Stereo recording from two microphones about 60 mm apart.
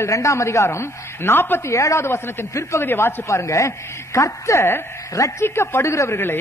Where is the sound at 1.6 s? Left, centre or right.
Left.